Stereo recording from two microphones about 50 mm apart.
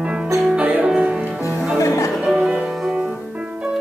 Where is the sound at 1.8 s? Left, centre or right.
Left.